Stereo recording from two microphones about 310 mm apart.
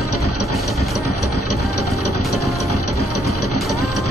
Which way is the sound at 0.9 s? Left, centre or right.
Left.